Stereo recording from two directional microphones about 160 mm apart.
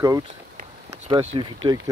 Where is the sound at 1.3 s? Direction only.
25° right (ahead or behind).